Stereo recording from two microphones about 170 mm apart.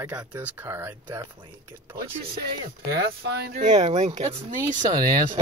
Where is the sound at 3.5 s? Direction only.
45° right (ahead or behind).